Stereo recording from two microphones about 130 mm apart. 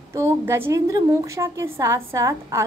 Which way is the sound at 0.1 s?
20° right (ahead or behind).